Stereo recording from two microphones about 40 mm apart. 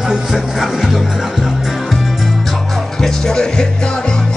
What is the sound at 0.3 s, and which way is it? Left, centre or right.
Music, centre.